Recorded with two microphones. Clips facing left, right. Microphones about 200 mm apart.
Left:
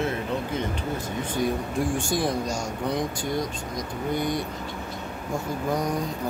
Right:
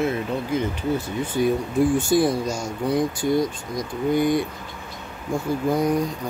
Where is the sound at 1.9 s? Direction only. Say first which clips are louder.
Right 6 dB; 5° right (ahead or behind).